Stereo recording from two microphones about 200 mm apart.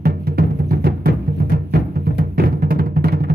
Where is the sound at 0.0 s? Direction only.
50° right (ahead or behind).